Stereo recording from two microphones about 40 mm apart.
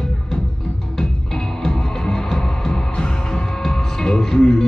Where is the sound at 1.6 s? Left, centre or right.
Centre.